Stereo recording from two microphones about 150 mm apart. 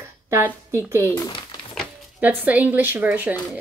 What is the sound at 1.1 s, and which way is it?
Speech, 30° left (ahead or behind).